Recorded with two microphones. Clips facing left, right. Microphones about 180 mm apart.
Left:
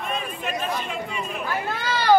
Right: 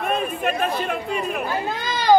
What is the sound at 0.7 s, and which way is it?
Chatter, 55° right (ahead or behind).